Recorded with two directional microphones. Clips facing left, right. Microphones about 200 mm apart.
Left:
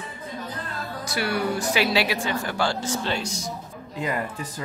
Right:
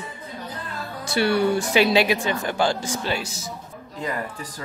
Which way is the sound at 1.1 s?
25° right (ahead or behind).